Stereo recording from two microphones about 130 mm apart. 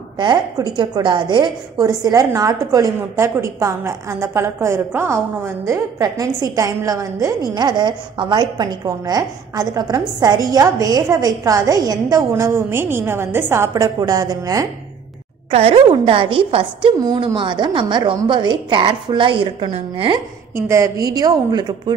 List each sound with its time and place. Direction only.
0.2 s a woman's voice: 35° right (ahead or behind); by 13.8 s 20° right (ahead or behind)
13.8 s a woman's voice: 30° right (ahead or behind)
15.5 s a woman's voice: 50° right (ahead or behind)
17.0 s a woman's voice: 35° right (ahead or behind)
20.5 s a woman's voice: 25° right (ahead or behind)